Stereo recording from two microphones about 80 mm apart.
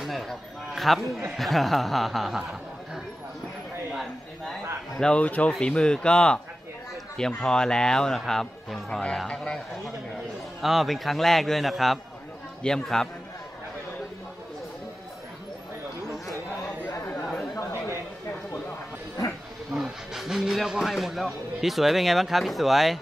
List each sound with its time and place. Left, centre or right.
0.0 s a sound: centre
1.3 s speech: centre
3.9 s a sound: centre
4.9 s speech: centre
5.2 s speech: centre
17.1 s chatter: centre
19.7 s speech: centre